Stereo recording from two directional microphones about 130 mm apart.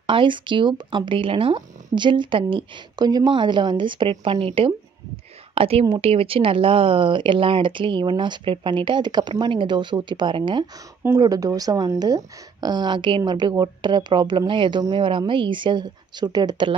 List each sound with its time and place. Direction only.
0.0 s a woman's voice: 40° right (ahead or behind)